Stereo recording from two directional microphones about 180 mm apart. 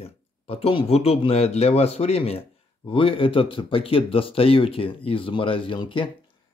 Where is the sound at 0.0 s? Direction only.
30° left (ahead or behind).